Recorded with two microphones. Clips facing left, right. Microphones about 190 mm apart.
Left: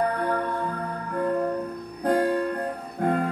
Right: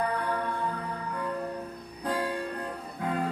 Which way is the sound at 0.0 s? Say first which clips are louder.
Left 5 dB; 55° left (ahead or behind).